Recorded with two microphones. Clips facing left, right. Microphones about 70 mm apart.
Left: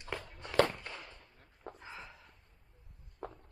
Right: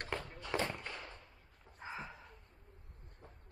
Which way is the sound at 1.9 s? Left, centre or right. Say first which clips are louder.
Right 8 dB; centre.